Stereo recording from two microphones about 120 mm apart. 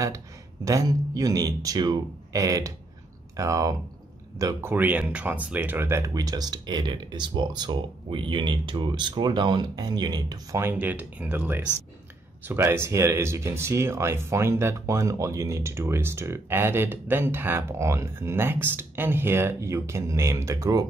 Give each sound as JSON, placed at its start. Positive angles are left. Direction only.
{"t": 0.7, "sound": "speech", "side_deg": -30}
{"t": 10.6, "sound": "speech", "side_deg": -15}
{"t": 12.6, "sound": "speech", "side_deg": -25}